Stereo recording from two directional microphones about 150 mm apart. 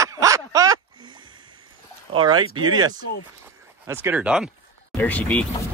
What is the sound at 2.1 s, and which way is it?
Speech, 30° right (ahead or behind).